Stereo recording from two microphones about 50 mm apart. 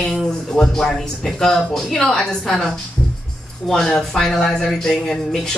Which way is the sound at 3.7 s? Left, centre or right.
Centre.